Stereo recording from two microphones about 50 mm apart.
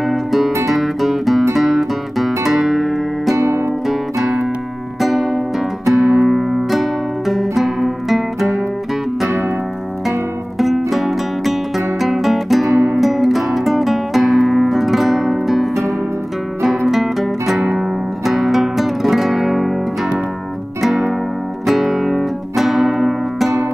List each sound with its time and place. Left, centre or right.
0.0 s guitar: centre
3.3 s music: right
5.0 s music: centre
10.9 s music: centre
20.8 s music: centre